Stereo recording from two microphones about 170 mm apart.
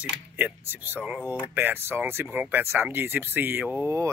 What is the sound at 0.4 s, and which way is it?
Speech, 10° right (ahead or behind).